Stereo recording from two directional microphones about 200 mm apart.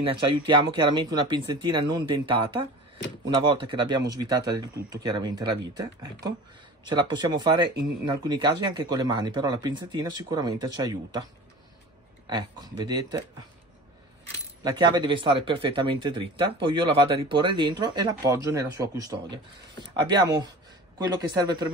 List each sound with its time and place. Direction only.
0.0 s speech: 25° right (ahead or behind)
12.3 s speech: 20° right (ahead or behind)
14.6 s speech: 20° right (ahead or behind)